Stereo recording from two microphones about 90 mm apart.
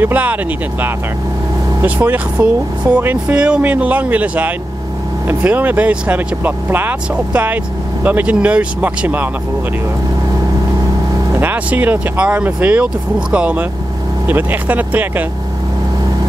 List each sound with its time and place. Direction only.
0.0 s speech: 15° right (ahead or behind)
11.3 s speech: 20° right (ahead or behind)